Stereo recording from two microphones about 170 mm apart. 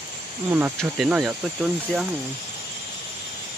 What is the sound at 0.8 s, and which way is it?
Speech, 5° right (ahead or behind).